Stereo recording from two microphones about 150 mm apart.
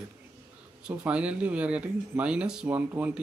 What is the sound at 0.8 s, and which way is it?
Speech, 10° right (ahead or behind).